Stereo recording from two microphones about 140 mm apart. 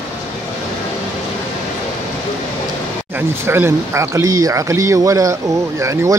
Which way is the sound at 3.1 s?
15° right (ahead or behind).